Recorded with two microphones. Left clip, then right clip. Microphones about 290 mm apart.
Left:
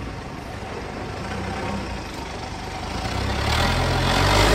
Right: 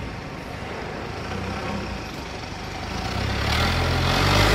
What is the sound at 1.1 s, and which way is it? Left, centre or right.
Vehicle, left.